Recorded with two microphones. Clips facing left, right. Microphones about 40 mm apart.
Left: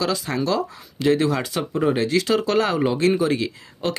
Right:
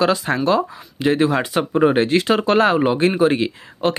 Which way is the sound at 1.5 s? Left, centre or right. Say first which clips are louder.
Right 7 dB; right.